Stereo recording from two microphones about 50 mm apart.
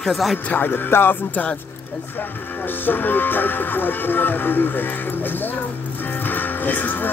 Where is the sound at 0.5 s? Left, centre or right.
Left.